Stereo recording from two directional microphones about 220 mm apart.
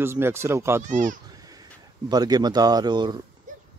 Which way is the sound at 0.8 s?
35° right (ahead or behind).